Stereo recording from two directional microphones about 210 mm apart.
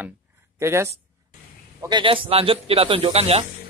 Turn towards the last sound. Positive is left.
turn(degrees=-30)  # may be behind; listen again after turning